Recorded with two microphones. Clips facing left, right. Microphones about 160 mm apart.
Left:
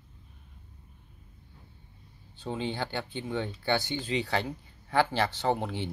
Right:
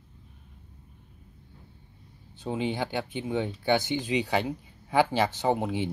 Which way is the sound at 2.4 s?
15° right (ahead or behind).